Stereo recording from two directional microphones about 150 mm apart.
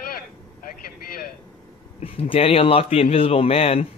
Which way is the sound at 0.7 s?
70° left (ahead or behind).